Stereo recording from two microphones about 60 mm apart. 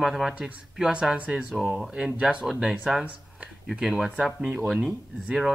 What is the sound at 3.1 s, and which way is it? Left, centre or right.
Speech, centre.